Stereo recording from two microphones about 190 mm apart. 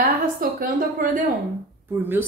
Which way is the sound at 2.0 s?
10° right (ahead or behind).